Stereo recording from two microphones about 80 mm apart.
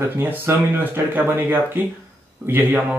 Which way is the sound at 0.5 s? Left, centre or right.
Right.